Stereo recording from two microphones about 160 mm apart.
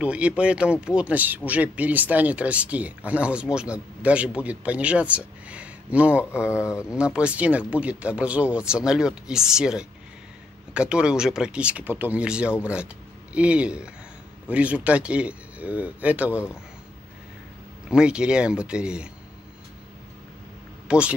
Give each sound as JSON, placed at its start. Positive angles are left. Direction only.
{"t": 0.0, "sound": "speech", "side_deg": -5}
{"t": 6.5, "sound": "speech", "side_deg": 15}
{"t": 7.0, "sound": "speech", "side_deg": -5}
{"t": 17.8, "sound": "speech", "side_deg": -5}
{"t": 20.9, "sound": "speech", "side_deg": -5}